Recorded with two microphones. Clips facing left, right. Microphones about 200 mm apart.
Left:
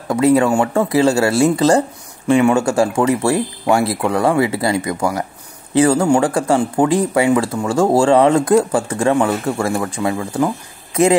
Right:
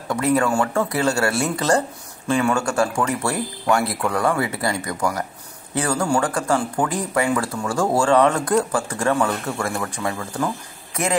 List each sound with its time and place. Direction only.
0.1 s speech: 25° left (ahead or behind)